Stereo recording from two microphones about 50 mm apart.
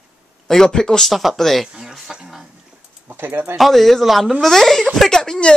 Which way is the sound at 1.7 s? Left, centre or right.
Centre.